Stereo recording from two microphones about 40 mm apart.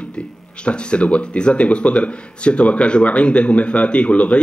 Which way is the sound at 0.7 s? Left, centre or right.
Left.